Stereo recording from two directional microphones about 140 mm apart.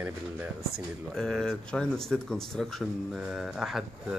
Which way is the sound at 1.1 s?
5° left (ahead or behind).